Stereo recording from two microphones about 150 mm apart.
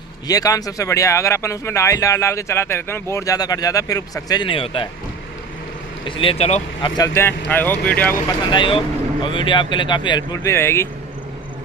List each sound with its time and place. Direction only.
0.3 s speech: 25° left (ahead or behind)
6.0 s speech: 35° left (ahead or behind)
7.0 s speech: 15° left (ahead or behind)
8.5 s speech: 35° left (ahead or behind); by 10.9 s 15° left (ahead or behind)